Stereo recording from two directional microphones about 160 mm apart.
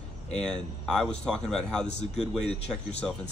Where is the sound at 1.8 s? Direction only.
45° left (ahead or behind).